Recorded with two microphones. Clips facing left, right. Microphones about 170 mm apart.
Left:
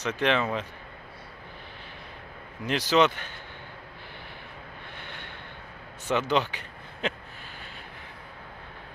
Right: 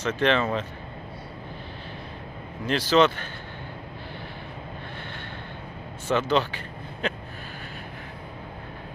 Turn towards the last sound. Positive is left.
turn(degrees=15)  # may be behind; listen again after turning